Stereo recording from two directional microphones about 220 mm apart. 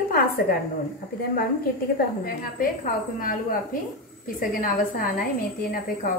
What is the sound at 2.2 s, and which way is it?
A woman's voice, 40° left (ahead or behind).